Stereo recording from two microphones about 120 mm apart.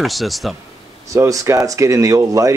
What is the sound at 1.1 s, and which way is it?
Speech, 25° right (ahead or behind).